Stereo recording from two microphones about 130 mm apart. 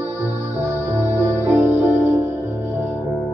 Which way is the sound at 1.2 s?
20° right (ahead or behind).